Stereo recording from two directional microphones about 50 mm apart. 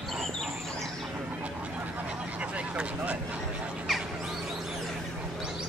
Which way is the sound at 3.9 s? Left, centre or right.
Centre.